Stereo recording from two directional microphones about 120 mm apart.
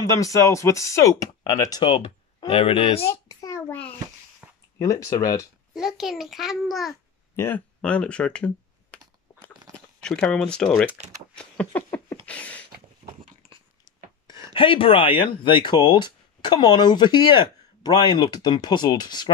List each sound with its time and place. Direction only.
0.0 s speech: 25° left (ahead or behind); by 3.1 s 55° left (ahead or behind)
3.3 s a sound: 25° left (ahead or behind)
4.4 s a sound: 20° right (ahead or behind)
4.7 s speech: 25° left (ahead or behind)
5.8 s a child's voice: centre (ahead or behind)
7.3 s speech: 15° left (ahead or behind)
8.9 s typing: 10° left (ahead or behind)
10.0 s a child's voice: 5° left (ahead or behind)
11.3 s a sound: 10° left (ahead or behind)
13.0 s dog: 60° right (ahead or behind)
14.5 s speech: 45° left (ahead or behind)